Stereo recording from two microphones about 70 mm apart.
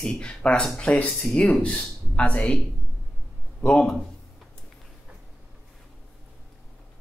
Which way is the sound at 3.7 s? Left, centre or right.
Centre.